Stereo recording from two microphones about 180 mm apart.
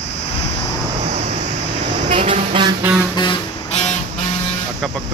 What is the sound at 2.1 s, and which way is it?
Speech, 35° right (ahead or behind).